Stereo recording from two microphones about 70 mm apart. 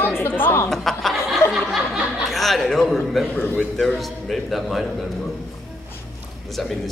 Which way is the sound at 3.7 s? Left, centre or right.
Centre.